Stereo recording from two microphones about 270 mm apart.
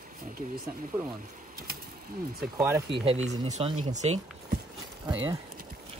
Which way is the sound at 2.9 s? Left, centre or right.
Right.